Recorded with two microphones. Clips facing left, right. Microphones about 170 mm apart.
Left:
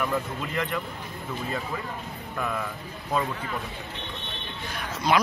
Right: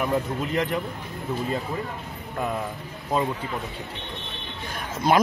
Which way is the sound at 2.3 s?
25° right (ahead or behind).